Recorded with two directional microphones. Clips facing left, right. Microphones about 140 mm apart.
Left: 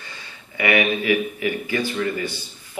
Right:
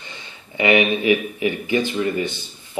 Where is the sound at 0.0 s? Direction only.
20° right (ahead or behind).